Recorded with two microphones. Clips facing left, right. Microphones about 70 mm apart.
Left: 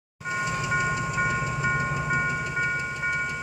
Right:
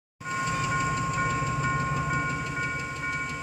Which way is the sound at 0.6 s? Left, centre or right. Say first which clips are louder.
Left 2 dB; centre.